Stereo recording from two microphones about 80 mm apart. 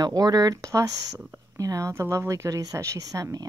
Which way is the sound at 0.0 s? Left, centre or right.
Right.